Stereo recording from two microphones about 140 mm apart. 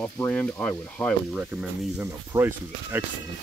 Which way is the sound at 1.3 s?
10° right (ahead or behind).